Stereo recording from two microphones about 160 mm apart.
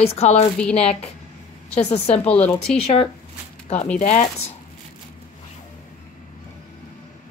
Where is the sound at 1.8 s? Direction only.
40° left (ahead or behind).